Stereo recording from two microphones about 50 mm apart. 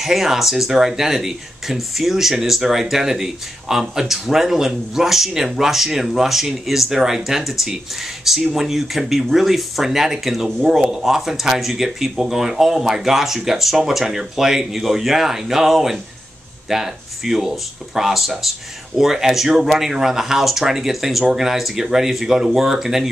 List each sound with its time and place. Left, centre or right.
0.0 s speech: centre